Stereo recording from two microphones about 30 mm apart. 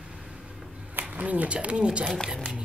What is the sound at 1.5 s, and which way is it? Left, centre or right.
Speech, right.